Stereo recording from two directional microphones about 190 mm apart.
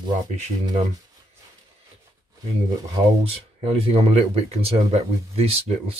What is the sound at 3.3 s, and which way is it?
Speech, 30° right (ahead or behind).